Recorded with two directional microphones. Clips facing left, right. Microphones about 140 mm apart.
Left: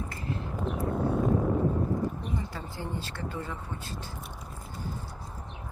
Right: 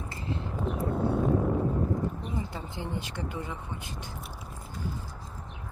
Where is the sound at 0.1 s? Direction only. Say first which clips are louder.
Even; 25° right (ahead or behind).